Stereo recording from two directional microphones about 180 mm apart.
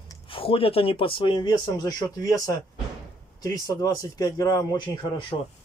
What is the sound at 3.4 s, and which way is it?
Speech, 20° left (ahead or behind).